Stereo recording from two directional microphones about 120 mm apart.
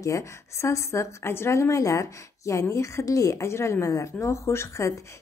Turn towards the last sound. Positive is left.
turn(degrees=25)  # may be behind; listen again after turning